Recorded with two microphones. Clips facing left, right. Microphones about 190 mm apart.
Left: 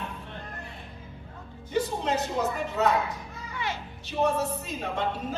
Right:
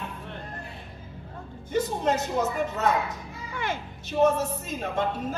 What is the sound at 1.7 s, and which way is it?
Speech, 45° right (ahead or behind).